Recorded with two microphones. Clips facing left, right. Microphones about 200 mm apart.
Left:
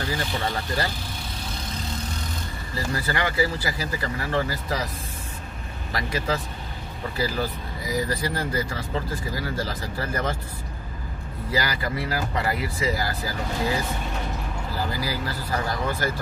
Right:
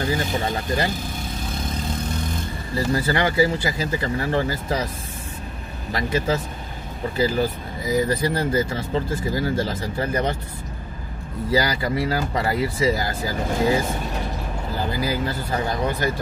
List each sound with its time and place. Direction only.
0.2 s speech: 45° right (ahead or behind)
2.9 s speech: 25° right (ahead or behind)
5.9 s speech: 25° right (ahead or behind)
11.5 s speech: 30° right (ahead or behind)
15.0 s speech: 20° right (ahead or behind)